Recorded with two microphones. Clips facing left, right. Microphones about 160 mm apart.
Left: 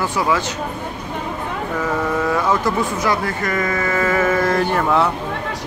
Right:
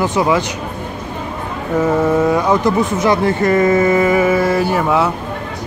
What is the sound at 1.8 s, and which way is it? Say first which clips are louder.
Speech: right 8 dB; 20° right (ahead or behind).